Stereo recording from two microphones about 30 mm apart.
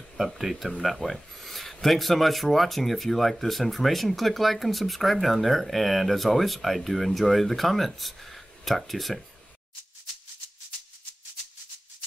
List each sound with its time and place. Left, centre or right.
0.4 s speech: centre